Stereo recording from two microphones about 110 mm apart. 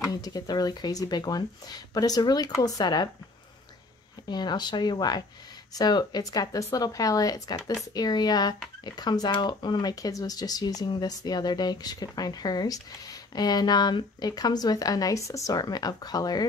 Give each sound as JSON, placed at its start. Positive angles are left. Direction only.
{"t": 0.1, "sound": "speech", "side_deg": 35}
{"t": 4.3, "sound": "speech", "side_deg": 40}